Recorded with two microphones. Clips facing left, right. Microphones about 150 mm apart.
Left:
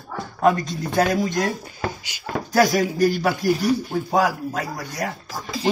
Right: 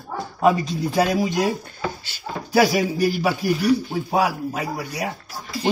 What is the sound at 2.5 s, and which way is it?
Speech, 5° right (ahead or behind).